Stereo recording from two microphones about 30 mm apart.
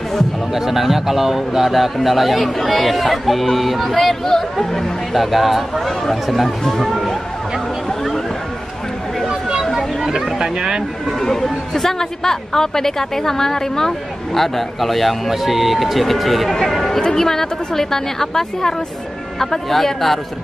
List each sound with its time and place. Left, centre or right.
0.6 s speech: centre
3.8 s a woman's voice: centre
5.1 s speech: centre
10.1 s speech: right
11.1 s a woman's voice: centre
17.0 s a woman's voice: centre